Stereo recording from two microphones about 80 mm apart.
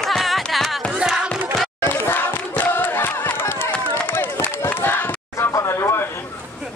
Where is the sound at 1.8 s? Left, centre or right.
Left.